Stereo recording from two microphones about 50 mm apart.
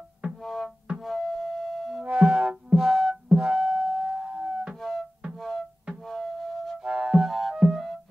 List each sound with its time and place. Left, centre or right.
0.4 s music: centre
2.0 s music: right
4.7 s music: centre
6.8 s music: centre
7.2 s music: centre